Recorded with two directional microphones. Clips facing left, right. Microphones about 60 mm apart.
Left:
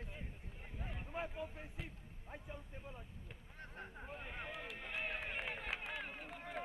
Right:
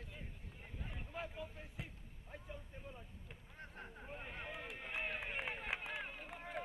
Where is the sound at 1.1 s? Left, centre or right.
Centre.